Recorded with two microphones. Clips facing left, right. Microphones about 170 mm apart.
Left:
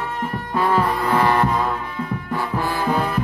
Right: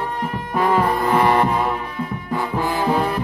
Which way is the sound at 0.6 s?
20° right (ahead or behind).